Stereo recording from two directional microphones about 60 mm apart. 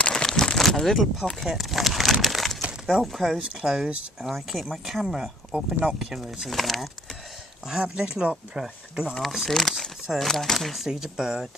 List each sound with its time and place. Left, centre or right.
0.0 s a sound: centre
2.2 s crumpling: centre
2.9 s speech: centre
7.8 s speech: centre
9.2 s speech: centre